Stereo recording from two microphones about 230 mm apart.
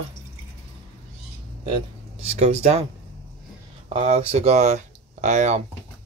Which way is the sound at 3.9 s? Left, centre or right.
Right.